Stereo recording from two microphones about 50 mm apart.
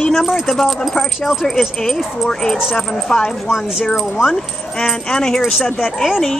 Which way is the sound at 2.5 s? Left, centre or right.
Centre.